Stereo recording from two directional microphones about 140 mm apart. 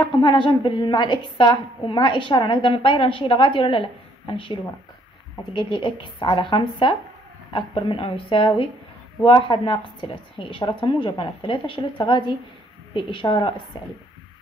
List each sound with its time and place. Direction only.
0.0 s a woman's voice: 35° left (ahead or behind)